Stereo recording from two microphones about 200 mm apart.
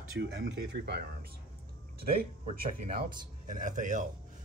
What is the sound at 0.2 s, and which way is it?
Speech, 55° right (ahead or behind).